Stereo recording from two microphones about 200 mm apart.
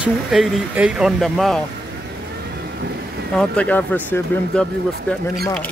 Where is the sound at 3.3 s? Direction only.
5° left (ahead or behind).